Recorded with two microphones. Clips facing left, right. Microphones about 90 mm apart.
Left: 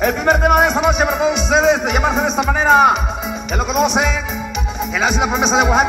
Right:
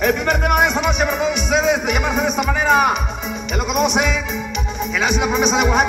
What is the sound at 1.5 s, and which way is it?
A man's voice, 30° left (ahead or behind).